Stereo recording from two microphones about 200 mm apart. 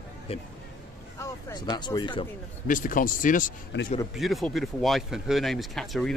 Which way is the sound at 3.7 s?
60° left (ahead or behind).